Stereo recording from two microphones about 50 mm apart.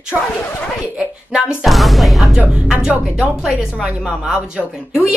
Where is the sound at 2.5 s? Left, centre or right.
Centre.